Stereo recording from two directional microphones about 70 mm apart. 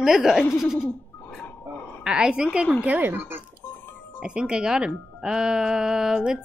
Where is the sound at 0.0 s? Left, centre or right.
Centre.